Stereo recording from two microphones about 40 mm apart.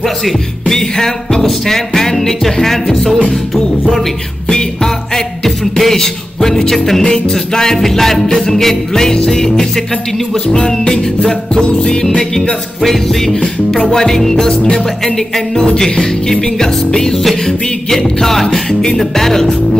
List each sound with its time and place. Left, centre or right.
0.7 s music: centre
4.5 s music: centre
10.3 s music: left
12.8 s music: centre
15.1 s music: centre